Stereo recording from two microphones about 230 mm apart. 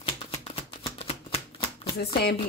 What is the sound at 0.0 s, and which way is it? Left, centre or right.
Shuffling cards, left.